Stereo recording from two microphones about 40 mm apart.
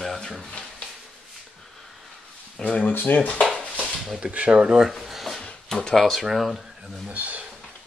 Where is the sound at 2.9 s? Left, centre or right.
Left.